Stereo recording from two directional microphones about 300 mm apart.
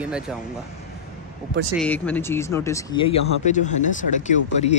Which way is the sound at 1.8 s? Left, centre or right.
Centre.